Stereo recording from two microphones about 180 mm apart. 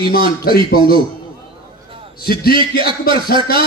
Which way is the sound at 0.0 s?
60° left (ahead or behind).